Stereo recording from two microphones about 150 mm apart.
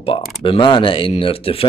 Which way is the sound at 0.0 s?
35° left (ahead or behind).